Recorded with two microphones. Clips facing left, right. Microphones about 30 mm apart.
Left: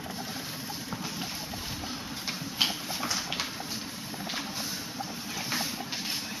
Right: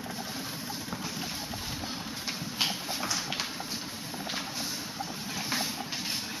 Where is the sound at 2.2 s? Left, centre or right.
Centre.